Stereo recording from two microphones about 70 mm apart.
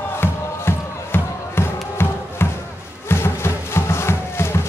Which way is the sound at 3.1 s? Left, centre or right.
Left.